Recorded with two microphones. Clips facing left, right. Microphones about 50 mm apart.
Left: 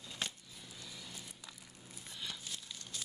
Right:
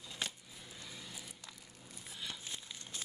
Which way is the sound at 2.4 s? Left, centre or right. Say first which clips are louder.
Even; right.